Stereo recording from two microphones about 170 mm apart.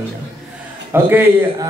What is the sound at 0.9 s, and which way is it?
Speech, 10° right (ahead or behind).